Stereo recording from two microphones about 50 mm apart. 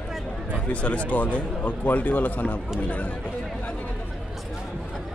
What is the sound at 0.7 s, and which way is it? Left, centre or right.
Speech, left.